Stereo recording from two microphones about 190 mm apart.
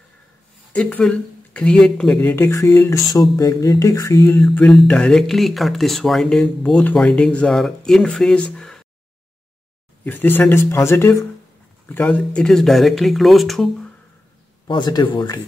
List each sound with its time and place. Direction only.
0.7 s speech: 5° left (ahead or behind)
4.4 s speech: 5° left (ahead or behind)
10.0 s speech: 10° left (ahead or behind)
14.7 s speech: 20° left (ahead or behind)